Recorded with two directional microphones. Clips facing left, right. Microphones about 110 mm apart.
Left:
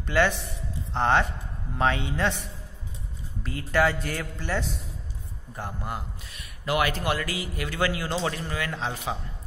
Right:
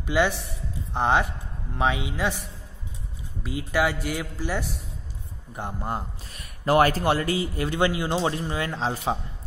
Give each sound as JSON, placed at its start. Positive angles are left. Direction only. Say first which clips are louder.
{"t": 0.0, "sound": "a man's voice", "louder": "even", "side_deg": -15}
{"t": 3.4, "sound": "a man's voice", "louder": "left 1 dB", "side_deg": -10}